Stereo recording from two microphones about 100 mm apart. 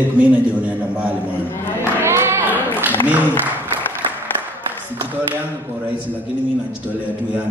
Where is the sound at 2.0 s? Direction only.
25° right (ahead or behind).